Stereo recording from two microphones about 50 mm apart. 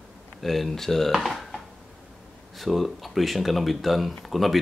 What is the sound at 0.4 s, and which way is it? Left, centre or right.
Speech, centre.